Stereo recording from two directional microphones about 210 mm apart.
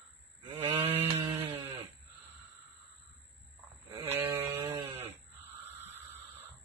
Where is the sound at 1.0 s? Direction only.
15° right (ahead or behind).